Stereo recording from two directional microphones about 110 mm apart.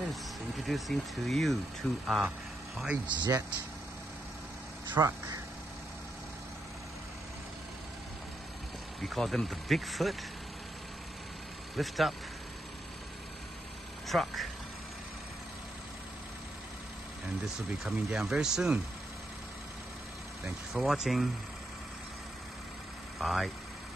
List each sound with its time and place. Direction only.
0.7 s speech: centre (ahead or behind)
3.1 s speech: 40° right (ahead or behind)
4.9 s speech: 30° right (ahead or behind)
9.0 s speech: centre (ahead or behind)
11.7 s speech: centre (ahead or behind)
14.0 s speech: centre (ahead or behind)
17.6 s speech: 5° right (ahead or behind)
20.4 s speech: 5° right (ahead or behind)
23.1 s speech: centre (ahead or behind)